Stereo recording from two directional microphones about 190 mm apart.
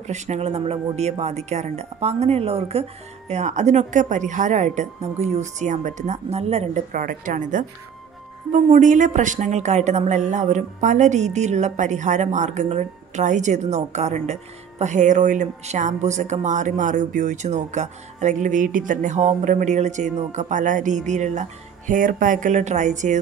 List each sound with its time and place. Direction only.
0.0 s speech: 35° right (ahead or behind)